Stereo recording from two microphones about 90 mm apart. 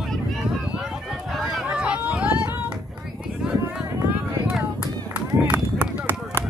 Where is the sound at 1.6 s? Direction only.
10° right (ahead or behind).